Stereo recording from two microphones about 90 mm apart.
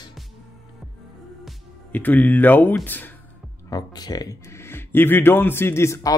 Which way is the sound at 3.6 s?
45° left (ahead or behind).